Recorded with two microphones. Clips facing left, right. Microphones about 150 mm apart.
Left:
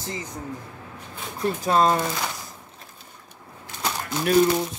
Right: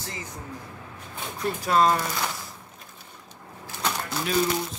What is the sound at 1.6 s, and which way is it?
Speech, 25° left (ahead or behind).